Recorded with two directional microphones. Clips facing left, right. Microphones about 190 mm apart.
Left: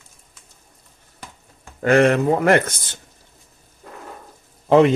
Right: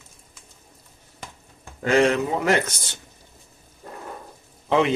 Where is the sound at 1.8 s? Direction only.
60° left (ahead or behind).